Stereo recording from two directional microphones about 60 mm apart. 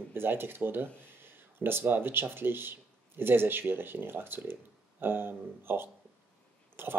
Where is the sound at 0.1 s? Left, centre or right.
Right.